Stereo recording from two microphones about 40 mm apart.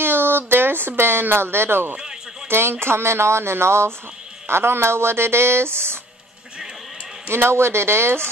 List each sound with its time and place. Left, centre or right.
0.0 s speech: right
7.2 s speech: right